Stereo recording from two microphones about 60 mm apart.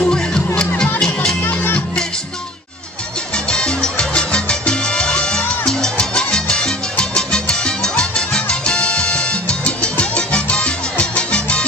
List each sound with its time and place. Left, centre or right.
0.0 s music: centre
3.4 s music: centre
5.7 s salsa music: centre